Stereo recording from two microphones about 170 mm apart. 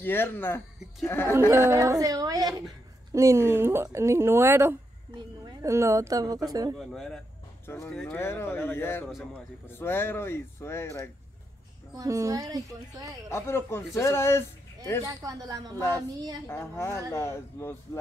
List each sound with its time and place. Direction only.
0.0 s speech: 10° left (ahead or behind)
1.5 s speech: 15° right (ahead or behind)
6.8 s speech: centre (ahead or behind)
7.6 s speech: 15° left (ahead or behind)
12.0 s speech: 20° right (ahead or behind)
13.3 s speech: 15° left (ahead or behind)
15.0 s speech: 20° right (ahead or behind)
15.7 s speech: 15° left (ahead or behind)